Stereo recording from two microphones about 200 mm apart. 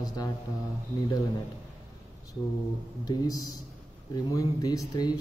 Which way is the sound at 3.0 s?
20° left (ahead or behind).